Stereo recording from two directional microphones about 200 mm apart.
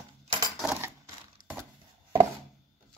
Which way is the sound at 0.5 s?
5° right (ahead or behind).